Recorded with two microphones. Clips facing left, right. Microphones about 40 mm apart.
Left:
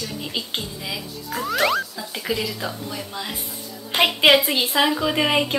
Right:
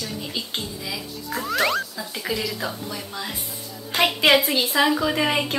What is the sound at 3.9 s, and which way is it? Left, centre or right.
A woman's voice, left.